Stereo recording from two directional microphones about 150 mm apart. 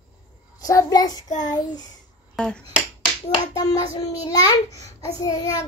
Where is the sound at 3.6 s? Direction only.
25° left (ahead or behind).